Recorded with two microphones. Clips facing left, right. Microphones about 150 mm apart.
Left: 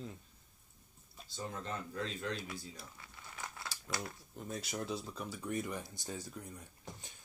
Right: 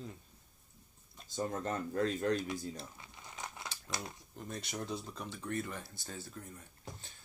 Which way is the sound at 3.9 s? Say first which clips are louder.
Left 2 dB; 20° right (ahead or behind).